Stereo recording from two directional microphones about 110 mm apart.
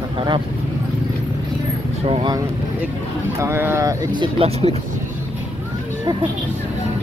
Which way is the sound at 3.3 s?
25° right (ahead or behind).